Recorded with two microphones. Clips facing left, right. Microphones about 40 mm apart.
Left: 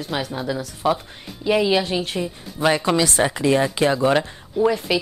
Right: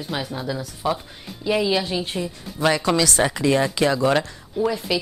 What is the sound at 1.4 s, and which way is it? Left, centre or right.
Speech, centre.